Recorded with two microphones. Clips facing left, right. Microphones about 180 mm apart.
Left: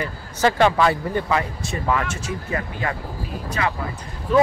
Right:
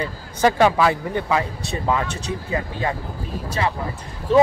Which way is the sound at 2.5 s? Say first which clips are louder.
Right 2 dB; 25° right (ahead or behind).